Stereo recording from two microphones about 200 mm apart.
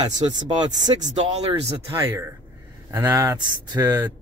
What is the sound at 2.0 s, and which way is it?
Speech, 15° right (ahead or behind).